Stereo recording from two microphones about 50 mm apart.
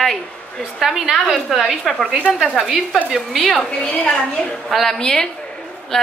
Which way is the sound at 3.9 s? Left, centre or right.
Left.